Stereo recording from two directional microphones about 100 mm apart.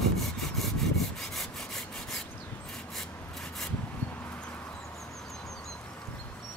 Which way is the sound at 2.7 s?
5° left (ahead or behind).